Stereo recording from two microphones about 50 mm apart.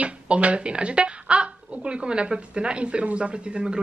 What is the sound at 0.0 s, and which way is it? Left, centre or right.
Speech, right.